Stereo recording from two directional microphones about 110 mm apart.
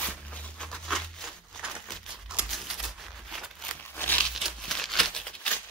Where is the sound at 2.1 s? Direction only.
10° right (ahead or behind).